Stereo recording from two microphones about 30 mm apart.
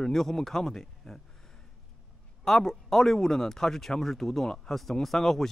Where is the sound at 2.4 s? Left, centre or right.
Centre.